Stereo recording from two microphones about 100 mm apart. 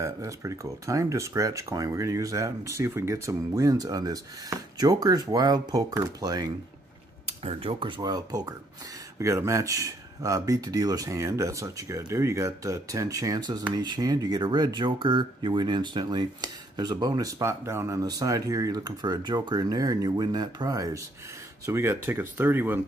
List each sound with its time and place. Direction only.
0.0 s speech: 30° right (ahead or behind)
7.4 s speech: 65° right (ahead or behind)
8.0 s speech: 40° right (ahead or behind)
21.6 s speech: 25° right (ahead or behind)